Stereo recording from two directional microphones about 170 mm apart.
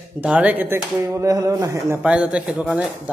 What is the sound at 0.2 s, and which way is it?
Speech, 5° right (ahead or behind).